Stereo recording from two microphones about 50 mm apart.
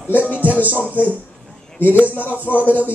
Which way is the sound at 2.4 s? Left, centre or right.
Left.